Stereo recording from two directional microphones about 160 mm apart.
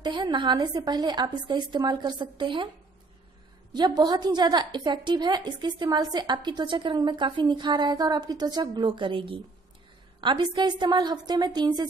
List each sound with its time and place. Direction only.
0.0 s a woman's voice: 25° right (ahead or behind)
3.7 s a woman's voice: 25° right (ahead or behind)